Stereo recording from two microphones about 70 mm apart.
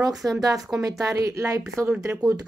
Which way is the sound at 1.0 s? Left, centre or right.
Right.